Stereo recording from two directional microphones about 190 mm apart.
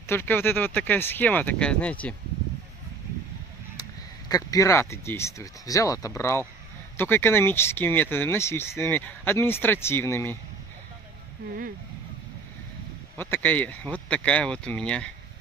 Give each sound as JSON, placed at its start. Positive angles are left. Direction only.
{"t": 0.0, "sound": "speech", "side_deg": 10}
{"t": 4.3, "sound": "speech", "side_deg": 20}
{"t": 13.2, "sound": "speech", "side_deg": 10}